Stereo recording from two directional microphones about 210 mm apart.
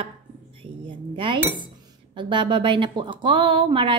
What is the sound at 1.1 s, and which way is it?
Speech, 25° right (ahead or behind).